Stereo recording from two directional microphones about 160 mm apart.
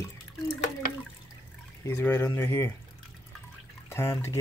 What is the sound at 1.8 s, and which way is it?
Speech, 15° left (ahead or behind).